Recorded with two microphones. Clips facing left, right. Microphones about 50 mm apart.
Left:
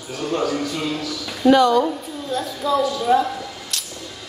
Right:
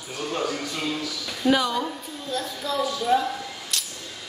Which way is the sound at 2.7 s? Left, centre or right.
Centre.